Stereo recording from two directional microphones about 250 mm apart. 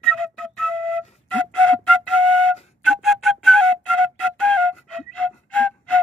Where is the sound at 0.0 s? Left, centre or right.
Centre.